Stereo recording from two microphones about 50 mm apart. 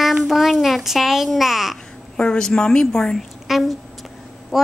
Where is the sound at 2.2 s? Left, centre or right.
Centre.